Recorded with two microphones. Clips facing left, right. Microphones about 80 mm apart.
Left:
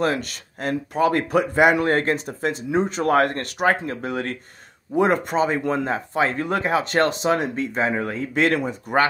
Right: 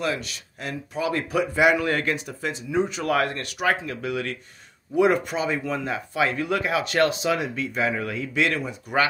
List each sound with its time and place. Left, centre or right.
0.0 s speech: left